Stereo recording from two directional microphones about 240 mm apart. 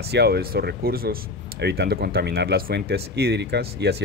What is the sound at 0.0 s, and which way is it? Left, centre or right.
Speech, right.